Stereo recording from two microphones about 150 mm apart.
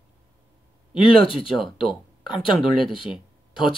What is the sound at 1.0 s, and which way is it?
Speech, 35° left (ahead or behind).